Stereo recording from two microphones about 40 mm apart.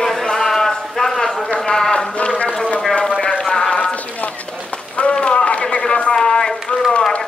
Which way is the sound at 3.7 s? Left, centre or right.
Left.